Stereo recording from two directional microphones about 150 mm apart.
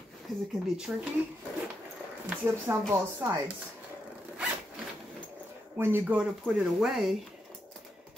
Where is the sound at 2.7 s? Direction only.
15° right (ahead or behind).